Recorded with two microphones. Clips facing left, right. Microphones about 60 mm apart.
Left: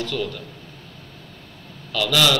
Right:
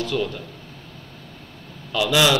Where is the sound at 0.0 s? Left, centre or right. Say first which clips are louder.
Right 2 dB; centre.